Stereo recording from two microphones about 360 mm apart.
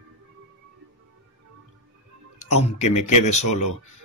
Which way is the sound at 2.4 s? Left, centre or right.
Centre.